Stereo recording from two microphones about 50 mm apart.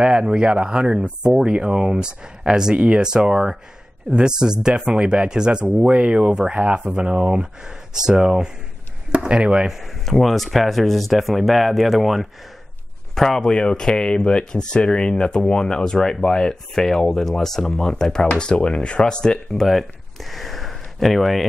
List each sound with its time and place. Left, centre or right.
0.0 s speech: centre
10.0 s speech: centre